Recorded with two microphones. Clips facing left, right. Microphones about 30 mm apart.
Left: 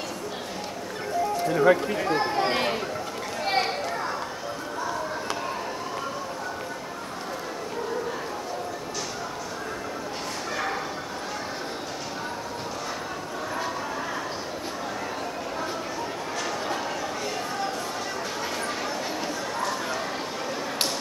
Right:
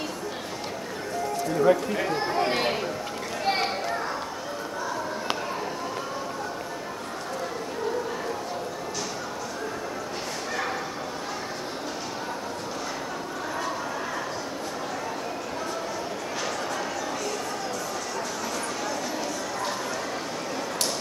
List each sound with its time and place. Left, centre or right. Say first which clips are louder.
1.5 s speech: left 1 dB; left
2.2 s chatter: even; centre
3.4 s a sound: left 1 dB; centre